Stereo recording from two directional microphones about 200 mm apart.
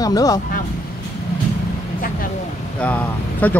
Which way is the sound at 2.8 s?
5° left (ahead or behind).